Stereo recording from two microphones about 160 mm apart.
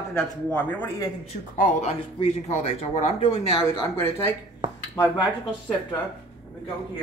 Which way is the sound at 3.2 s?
30° left (ahead or behind).